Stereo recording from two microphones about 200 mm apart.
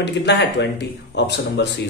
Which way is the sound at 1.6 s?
60° left (ahead or behind).